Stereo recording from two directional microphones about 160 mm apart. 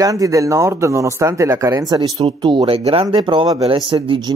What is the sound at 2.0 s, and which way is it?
Speech, 30° right (ahead or behind).